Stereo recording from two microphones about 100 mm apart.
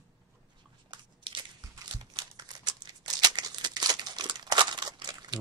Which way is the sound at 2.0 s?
45° right (ahead or behind).